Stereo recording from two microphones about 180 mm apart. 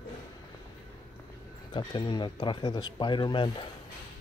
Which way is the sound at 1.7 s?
25° left (ahead or behind).